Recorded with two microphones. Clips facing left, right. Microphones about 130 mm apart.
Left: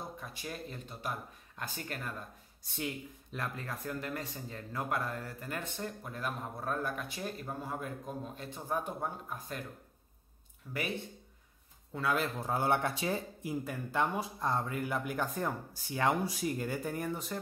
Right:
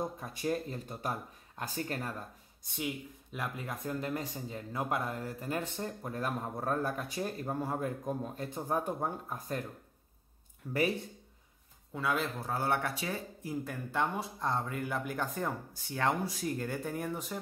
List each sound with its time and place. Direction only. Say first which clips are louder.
0.2 s speech: right 8 dB; 40° right (ahead or behind)
2.8 s speech: right 1 dB; 10° right (ahead or behind)
3.8 s a man's voice: right 4 dB; 25° right (ahead or behind)
10.6 s speech: right 5 dB; 15° right (ahead or behind)
11.9 s speech: even; 5° right (ahead or behind)
12.4 s speech: left 2 dB; 20° left (ahead or behind)
13.4 s speech: left 1 dB; 15° left (ahead or behind)
13.9 s speech: left 1 dB; centre (ahead or behind)